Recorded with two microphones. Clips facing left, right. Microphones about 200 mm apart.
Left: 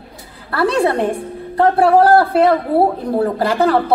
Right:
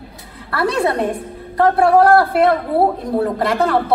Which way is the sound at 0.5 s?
30° left (ahead or behind).